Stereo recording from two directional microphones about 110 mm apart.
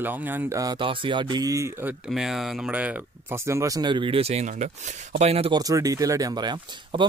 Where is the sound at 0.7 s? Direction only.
50° right (ahead or behind); by 1.9 s 30° right (ahead or behind).